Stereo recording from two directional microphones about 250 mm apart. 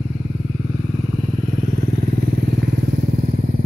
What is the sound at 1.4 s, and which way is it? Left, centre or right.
Motorcycle, right.